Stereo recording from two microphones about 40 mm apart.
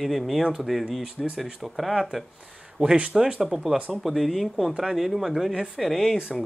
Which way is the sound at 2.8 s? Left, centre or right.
Right.